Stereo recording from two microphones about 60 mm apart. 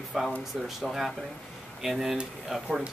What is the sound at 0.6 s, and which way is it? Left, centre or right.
Speech, centre.